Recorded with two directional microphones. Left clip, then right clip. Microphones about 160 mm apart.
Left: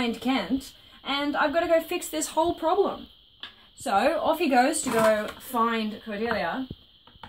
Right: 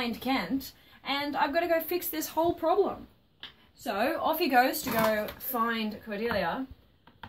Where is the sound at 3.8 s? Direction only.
40° left (ahead or behind).